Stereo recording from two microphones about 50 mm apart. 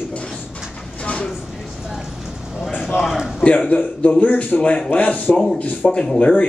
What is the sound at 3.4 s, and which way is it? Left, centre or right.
A man's voice, left.